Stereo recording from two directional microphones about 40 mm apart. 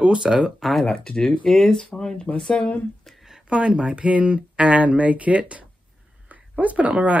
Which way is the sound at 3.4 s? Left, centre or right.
Right.